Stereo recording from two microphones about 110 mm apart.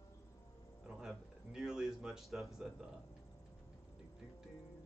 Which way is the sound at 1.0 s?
5° right (ahead or behind).